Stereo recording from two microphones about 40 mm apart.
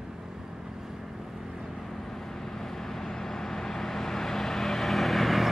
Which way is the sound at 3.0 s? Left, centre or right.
Centre.